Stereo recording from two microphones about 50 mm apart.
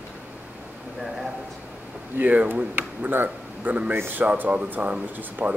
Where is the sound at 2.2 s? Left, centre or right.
Right.